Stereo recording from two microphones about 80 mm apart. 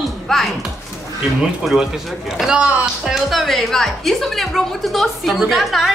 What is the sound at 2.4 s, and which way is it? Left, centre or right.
Speech, centre.